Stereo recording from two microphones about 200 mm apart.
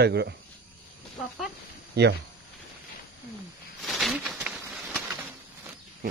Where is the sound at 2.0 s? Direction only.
55° right (ahead or behind).